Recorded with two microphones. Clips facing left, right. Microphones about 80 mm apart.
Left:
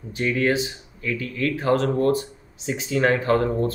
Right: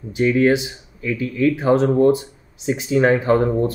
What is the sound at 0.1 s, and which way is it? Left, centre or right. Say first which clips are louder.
Speech: right 6 dB; centre.